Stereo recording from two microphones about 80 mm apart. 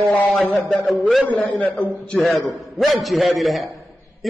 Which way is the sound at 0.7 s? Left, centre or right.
Centre.